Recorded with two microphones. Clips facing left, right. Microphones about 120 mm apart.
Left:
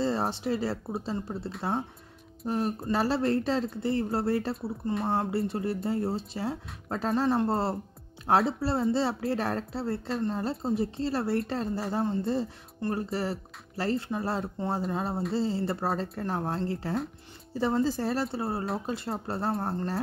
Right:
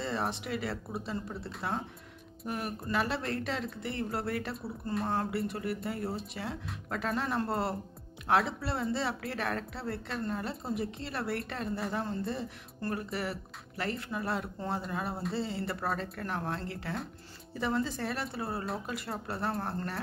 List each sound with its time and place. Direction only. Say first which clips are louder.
0.0 s speech: left 6 dB; 30° left (ahead or behind)